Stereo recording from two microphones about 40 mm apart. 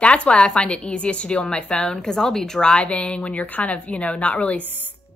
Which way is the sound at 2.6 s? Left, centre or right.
Left.